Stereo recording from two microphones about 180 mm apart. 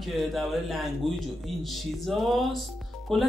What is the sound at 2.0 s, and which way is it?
Speech, centre (ahead or behind).